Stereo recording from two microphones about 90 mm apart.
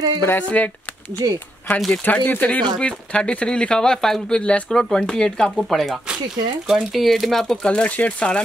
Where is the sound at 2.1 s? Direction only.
20° left (ahead or behind).